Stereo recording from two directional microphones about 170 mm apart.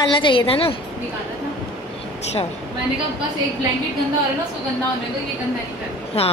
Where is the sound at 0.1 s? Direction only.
30° left (ahead or behind).